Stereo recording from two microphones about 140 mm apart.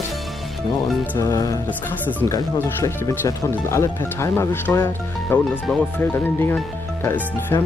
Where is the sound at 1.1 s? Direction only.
20° left (ahead or behind).